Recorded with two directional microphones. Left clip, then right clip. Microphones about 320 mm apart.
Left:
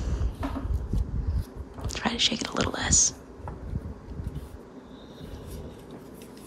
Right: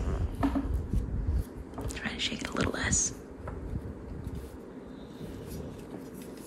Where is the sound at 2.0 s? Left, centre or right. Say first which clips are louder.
Left 8 dB; centre.